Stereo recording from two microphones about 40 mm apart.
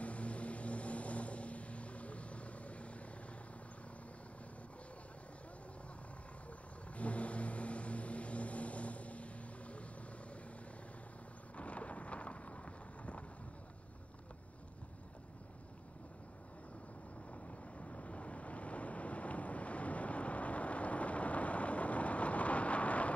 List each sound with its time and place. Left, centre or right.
0.0 s vehicle: left
7.0 s vehicle: left
11.5 s thunder: left
17.3 s vehicle: left